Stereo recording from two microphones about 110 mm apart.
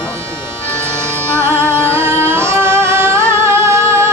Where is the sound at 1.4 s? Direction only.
25° right (ahead or behind).